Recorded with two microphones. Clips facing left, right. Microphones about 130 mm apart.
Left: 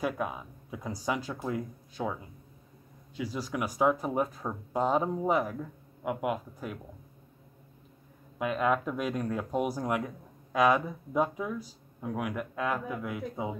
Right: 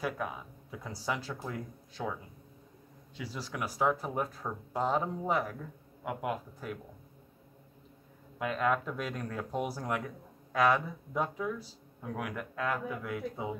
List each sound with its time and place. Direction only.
0.0 s speech: 15° left (ahead or behind)
3.2 s speech: 15° left (ahead or behind)
8.4 s speech: 15° left (ahead or behind)